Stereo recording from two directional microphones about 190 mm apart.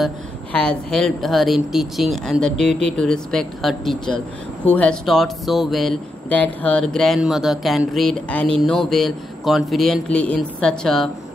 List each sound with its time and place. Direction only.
0.0 s speech: 5° left (ahead or behind)